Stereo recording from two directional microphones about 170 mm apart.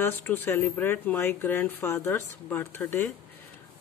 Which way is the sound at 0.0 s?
10° left (ahead or behind).